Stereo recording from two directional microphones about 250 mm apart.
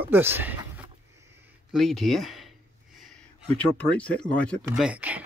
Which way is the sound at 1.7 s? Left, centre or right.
Centre.